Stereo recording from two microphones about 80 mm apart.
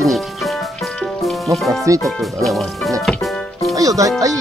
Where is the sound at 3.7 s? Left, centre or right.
Right.